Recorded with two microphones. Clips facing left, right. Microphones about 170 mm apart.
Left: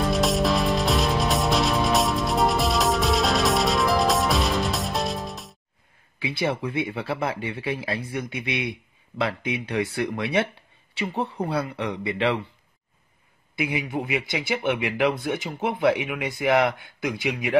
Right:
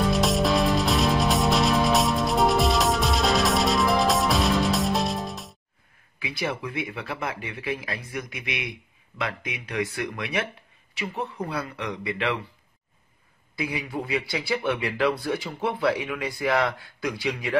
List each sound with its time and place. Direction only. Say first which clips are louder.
0.0 s music: even; centre (ahead or behind)
6.1 s speech: left 4 dB; 30° left (ahead or behind)
13.6 s speech: left 3 dB; 25° left (ahead or behind)